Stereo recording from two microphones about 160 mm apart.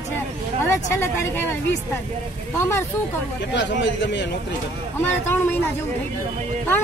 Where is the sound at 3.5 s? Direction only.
90° left.